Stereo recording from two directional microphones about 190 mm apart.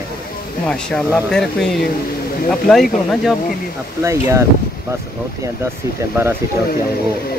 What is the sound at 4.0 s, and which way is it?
Speech, 15° right (ahead or behind).